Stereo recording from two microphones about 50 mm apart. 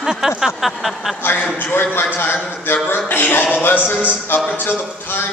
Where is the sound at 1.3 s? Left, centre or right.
Left.